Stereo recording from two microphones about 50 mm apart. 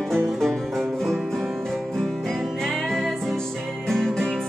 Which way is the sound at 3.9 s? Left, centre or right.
Centre.